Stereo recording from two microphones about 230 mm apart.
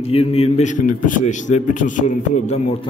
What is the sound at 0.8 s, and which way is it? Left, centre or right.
A man's voice, left.